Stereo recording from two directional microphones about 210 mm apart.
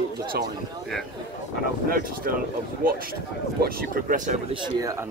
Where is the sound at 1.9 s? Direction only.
45° right (ahead or behind).